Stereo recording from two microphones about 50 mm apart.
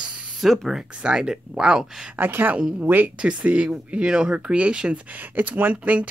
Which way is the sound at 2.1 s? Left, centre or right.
Right.